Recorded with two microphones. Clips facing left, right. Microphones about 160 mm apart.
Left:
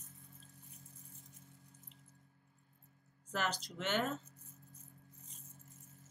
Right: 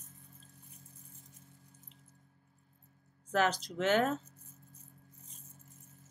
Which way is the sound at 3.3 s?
65° right (ahead or behind).